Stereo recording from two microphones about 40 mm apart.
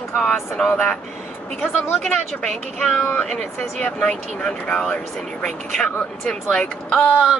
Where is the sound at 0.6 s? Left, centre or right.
Left.